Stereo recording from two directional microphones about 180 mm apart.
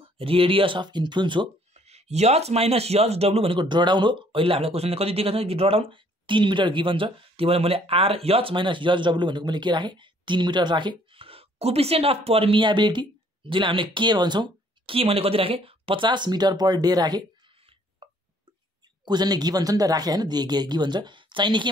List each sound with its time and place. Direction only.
0.2 s speech: 30° right (ahead or behind)
1.7 s speech: 35° right (ahead or behind)
18.0 s a sound: 30° right (ahead or behind)
19.0 s speech: 25° right (ahead or behind)